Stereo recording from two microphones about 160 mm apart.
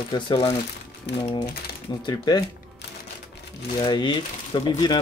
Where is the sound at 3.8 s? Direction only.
30° left (ahead or behind).